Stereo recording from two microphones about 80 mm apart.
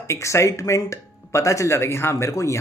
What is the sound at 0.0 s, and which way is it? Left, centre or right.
Speech, left.